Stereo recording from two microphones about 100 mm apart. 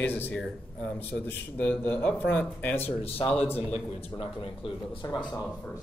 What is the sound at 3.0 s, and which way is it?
Speech, 70° left (ahead or behind).